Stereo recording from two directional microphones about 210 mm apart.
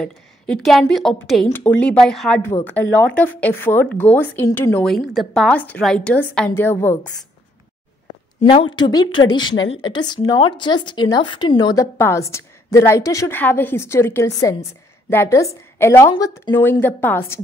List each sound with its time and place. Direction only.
0.0 s a woman's voice: centre (ahead or behind)
8.7 s a woman's voice: 20° left (ahead or behind)